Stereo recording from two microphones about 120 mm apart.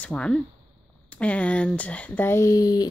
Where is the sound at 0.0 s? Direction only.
10° left (ahead or behind).